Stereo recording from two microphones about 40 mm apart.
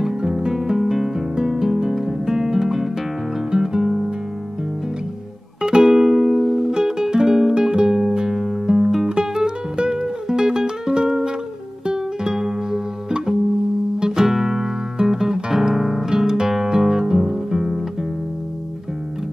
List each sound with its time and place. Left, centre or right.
0.0 s music: centre
5.6 s music: centre
12.4 s music: centre
15.7 s guitar: centre